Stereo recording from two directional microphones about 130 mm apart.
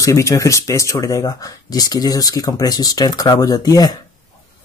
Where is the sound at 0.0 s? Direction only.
25° left (ahead or behind).